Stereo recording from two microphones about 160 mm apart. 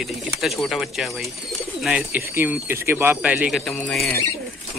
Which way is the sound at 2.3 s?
15° right (ahead or behind).